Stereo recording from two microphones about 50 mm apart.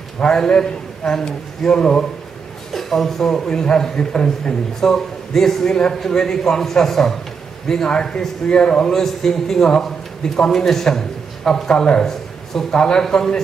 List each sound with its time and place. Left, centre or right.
0.2 s a man's voice: centre
2.7 s a man's voice: centre